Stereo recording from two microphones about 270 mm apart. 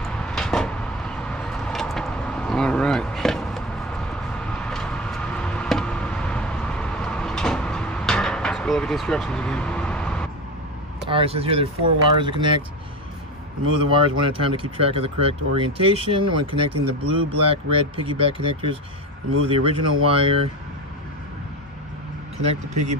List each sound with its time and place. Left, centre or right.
0.0 s vehicle: centre
11.1 s speech: right
13.7 s speech: centre
22.4 s speech: right